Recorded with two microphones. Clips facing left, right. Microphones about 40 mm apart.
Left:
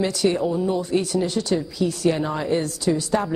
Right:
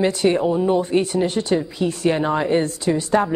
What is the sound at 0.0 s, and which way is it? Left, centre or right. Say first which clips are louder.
Speech: right 3 dB; right.